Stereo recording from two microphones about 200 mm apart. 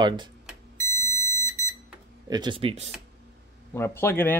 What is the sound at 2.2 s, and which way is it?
Speech, 20° right (ahead or behind).